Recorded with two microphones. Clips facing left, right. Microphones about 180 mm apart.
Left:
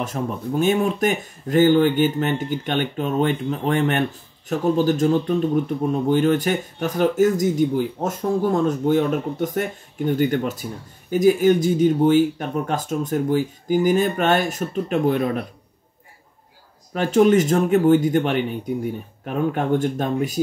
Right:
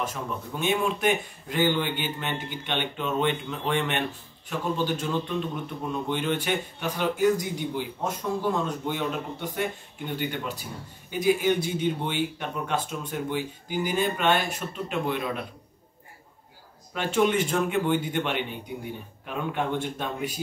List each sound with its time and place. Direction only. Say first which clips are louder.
0.1 s speech: left 9 dB; 40° left (ahead or behind)
16.9 s speech: left 8 dB; 40° left (ahead or behind)